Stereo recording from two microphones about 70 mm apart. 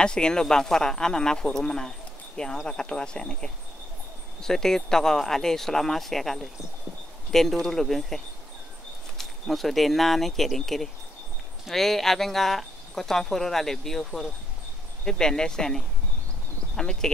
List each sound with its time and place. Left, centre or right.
0.0 s speech: centre
9.2 s speech: centre